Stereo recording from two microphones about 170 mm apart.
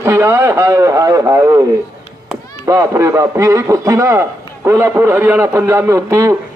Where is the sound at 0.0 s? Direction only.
15° right (ahead or behind).